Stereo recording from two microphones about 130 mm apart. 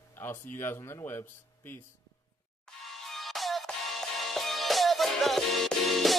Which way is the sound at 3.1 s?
Centre (ahead or behind).